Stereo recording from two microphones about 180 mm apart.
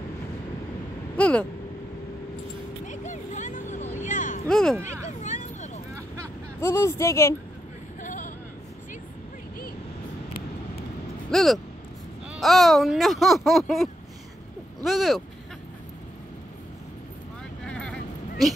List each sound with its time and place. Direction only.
1.1 s a sound: 5° left (ahead or behind)
2.9 s vehicle: 45° left (ahead or behind)
4.0 s a sound: 45° left (ahead or behind)
4.5 s owl: 5° left (ahead or behind)
5.2 s vehicle: 45° left (ahead or behind)
6.6 s speech: 15° left (ahead or behind)
8.0 s a sound: 45° left (ahead or behind)
11.2 s speech: centre (ahead or behind)
14.8 s owl: centre (ahead or behind)
17.6 s vehicle: 5° left (ahead or behind)